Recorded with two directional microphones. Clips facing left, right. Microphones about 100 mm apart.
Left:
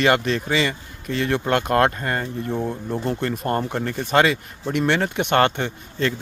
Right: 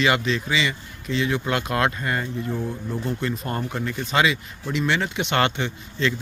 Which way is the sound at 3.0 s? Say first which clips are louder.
Left 3 dB; 55° left (ahead or behind).